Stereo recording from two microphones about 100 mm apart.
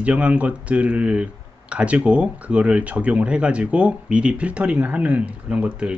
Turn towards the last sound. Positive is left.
turn(degrees=-10)  # may be behind; listen again after turning